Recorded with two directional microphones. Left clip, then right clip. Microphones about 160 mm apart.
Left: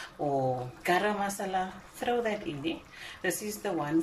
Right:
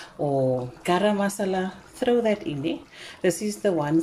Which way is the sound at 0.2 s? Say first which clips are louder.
Right 6 dB; 25° right (ahead or behind).